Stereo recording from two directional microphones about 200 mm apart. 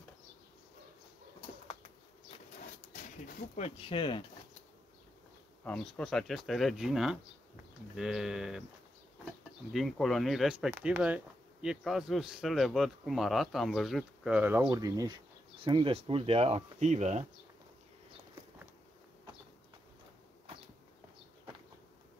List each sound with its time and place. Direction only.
2.9 s speech: 35° left (ahead or behind)
5.6 s speech: 5° left (ahead or behind)
9.7 s speech: centre (ahead or behind); by 17.2 s 35° right (ahead or behind)